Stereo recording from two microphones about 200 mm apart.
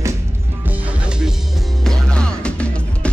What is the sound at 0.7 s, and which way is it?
Music, 5° right (ahead or behind).